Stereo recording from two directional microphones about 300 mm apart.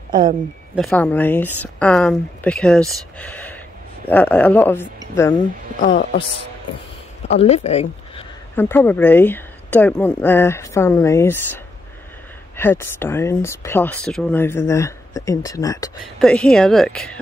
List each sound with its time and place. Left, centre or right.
0.1 s speech: centre
0.7 s speech: centre
3.2 s a sound: centre
4.1 s speech: centre
5.4 s speech: left
7.2 s speech: left
8.5 s speech: centre